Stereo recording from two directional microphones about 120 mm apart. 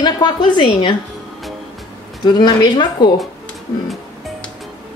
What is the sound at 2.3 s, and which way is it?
Speech, 35° left (ahead or behind).